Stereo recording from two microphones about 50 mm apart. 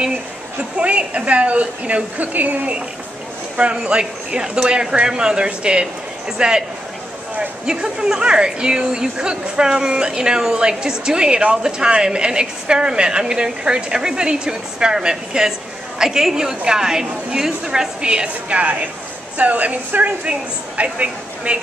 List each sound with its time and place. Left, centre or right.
0.7 s a woman's voice: right